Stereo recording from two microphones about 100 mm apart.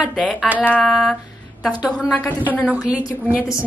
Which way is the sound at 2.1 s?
15° left (ahead or behind).